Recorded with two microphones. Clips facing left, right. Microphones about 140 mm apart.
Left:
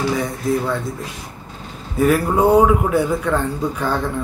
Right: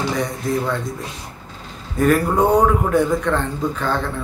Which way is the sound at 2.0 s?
5° left (ahead or behind).